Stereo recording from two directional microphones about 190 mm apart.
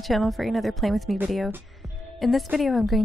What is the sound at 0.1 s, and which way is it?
A woman's voice, centre (ahead or behind).